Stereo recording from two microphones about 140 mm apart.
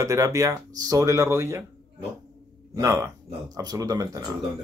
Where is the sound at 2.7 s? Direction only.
20° right (ahead or behind).